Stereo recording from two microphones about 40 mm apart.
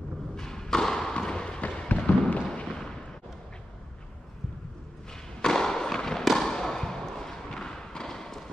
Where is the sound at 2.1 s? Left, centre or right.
Left.